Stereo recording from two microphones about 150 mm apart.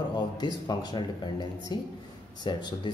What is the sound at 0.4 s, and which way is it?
Speech, 30° left (ahead or behind).